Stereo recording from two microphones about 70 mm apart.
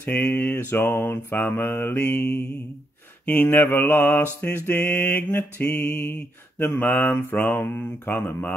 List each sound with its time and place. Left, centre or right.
0.0 s mantra: left
3.3 s mantra: left